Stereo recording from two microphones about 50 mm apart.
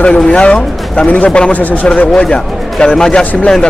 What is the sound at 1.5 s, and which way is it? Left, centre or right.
Speech, left.